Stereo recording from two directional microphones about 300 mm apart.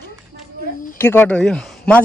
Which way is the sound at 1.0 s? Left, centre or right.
Centre.